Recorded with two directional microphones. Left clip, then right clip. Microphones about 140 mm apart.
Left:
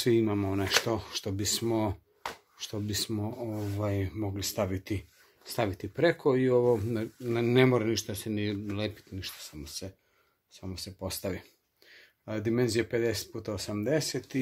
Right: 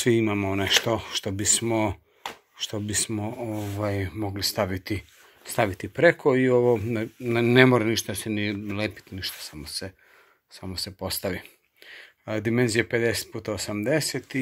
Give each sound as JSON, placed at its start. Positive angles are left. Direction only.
{"t": 0.0, "sound": "speech", "side_deg": -15}
{"t": 7.2, "sound": "speech", "side_deg": -30}
{"t": 8.1, "sound": "speech", "side_deg": -20}